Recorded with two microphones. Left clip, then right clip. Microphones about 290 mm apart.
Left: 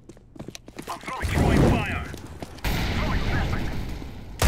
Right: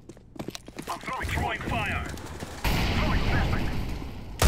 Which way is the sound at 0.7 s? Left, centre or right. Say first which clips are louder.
Even; centre.